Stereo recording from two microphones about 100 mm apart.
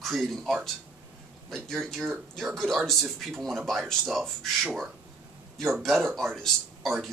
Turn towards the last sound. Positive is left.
turn(degrees=0)  # may be behind; listen again after turning